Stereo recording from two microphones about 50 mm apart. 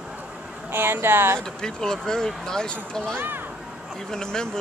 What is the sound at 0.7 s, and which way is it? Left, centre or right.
Speech, right.